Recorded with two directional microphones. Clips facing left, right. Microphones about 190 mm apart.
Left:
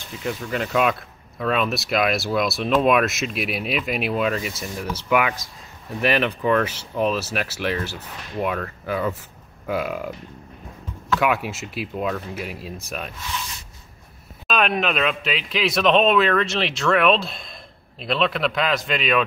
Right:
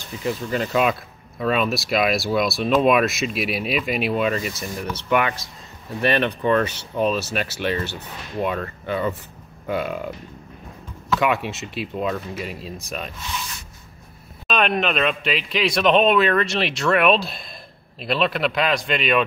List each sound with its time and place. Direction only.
0.2 s speech: centre (ahead or behind)
11.1 s speech: centre (ahead or behind)
14.5 s speech: 5° left (ahead or behind)